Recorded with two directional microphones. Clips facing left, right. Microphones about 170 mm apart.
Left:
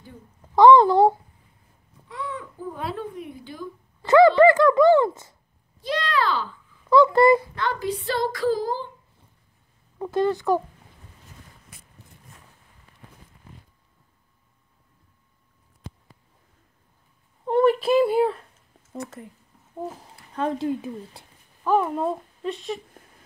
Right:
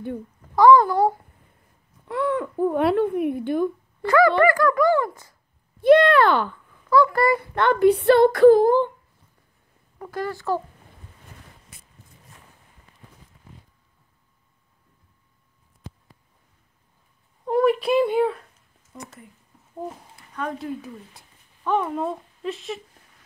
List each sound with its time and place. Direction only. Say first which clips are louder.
0.6 s speech: left 1 dB; 25° left (ahead or behind)
2.0 s speech: right 10 dB; 60° right (ahead or behind)
4.0 s speech: left 3 dB; 25° left (ahead or behind)
5.8 s speech: right 11 dB; 60° right (ahead or behind)
6.9 s speech: left 3 dB; 25° left (ahead or behind)
7.5 s speech: right 10 dB; 60° right (ahead or behind)
9.9 s speech: left 7 dB; 20° left (ahead or behind)
17.5 s speech: left 1 dB; centre (ahead or behind)
20.6 s speech: left 5 dB; 25° left (ahead or behind)
21.6 s speech: left 2 dB; 5° left (ahead or behind)